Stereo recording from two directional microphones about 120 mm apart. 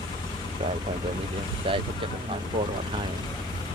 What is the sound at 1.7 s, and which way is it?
Speech, 45° right (ahead or behind).